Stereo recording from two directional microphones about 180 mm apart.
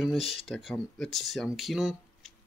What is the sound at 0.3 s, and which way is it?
Speech, centre (ahead or behind).